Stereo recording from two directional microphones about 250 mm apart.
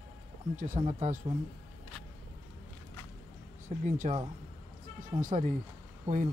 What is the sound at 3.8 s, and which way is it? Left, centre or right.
Speech, right.